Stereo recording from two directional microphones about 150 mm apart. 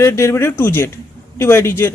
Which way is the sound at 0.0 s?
15° left (ahead or behind).